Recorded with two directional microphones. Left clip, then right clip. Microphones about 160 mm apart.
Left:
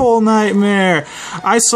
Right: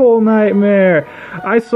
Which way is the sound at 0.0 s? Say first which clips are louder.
Right 2 dB; 30° left (ahead or behind).